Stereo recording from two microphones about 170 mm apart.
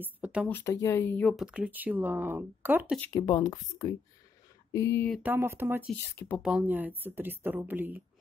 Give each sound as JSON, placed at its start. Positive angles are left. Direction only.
{"t": 0.0, "sound": "speech", "side_deg": -10}
{"t": 0.5, "sound": "speech", "side_deg": 15}
{"t": 1.3, "sound": "speech", "side_deg": -5}
{"t": 3.0, "sound": "speech", "side_deg": 20}
{"t": 5.2, "sound": "speech", "side_deg": -15}
{"t": 6.1, "sound": "speech", "side_deg": 10}
{"t": 6.4, "sound": "speech", "side_deg": -10}